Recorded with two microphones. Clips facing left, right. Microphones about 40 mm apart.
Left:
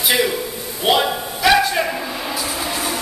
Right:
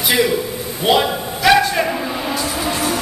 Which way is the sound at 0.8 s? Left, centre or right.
Centre.